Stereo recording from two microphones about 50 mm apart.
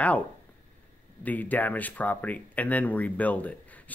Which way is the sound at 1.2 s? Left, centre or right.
Left.